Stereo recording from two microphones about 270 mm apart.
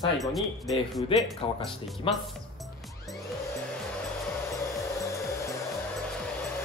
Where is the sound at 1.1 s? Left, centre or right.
Centre.